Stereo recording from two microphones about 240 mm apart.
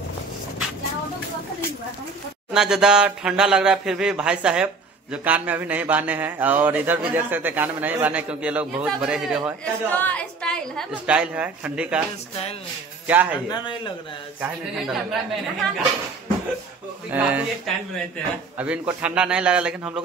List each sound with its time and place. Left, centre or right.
2.5 s a man's voice: centre
13.0 s speech: centre
13.5 s a man's voice: centre
14.4 s speech: centre
17.1 s speech: centre